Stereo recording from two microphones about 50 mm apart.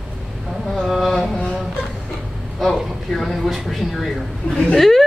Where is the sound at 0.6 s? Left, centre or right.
Centre.